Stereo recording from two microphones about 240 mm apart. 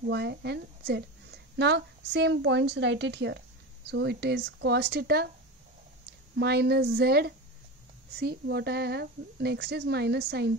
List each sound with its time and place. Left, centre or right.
0.0 s a woman's voice: right
6.3 s a woman's voice: right